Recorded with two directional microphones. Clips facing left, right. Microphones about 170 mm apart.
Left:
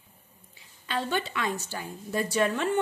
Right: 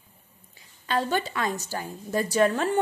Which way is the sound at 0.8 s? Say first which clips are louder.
Right 4 dB; 40° right (ahead or behind).